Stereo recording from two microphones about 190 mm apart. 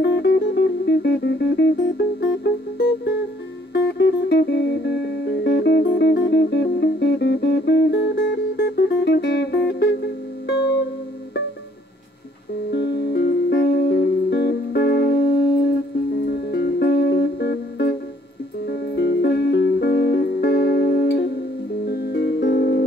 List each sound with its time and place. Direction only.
0.0 s music: 60° left (ahead or behind)
12.7 s music: 60° left (ahead or behind)
16.3 s music: 60° left (ahead or behind)